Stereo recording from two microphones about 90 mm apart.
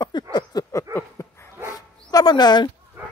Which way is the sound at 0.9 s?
30° left (ahead or behind).